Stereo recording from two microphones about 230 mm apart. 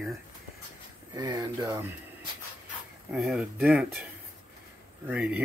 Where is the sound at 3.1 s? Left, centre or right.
Centre.